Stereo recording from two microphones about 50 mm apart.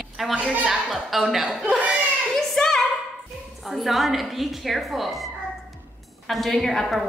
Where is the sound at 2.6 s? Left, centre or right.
Centre.